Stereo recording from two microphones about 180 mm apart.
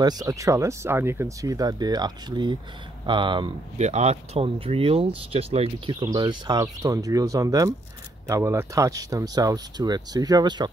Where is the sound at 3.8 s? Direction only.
40° right (ahead or behind).